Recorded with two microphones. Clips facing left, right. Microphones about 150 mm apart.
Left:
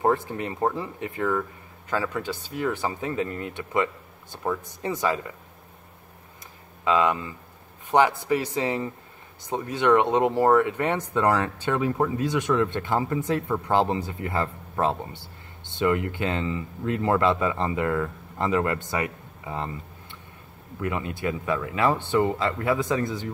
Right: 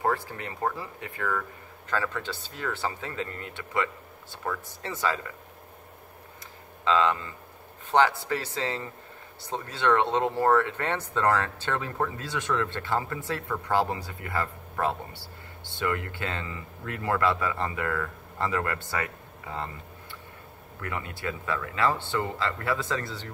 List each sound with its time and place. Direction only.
0.0 s speech: 20° left (ahead or behind)
6.8 s speech: 15° left (ahead or behind)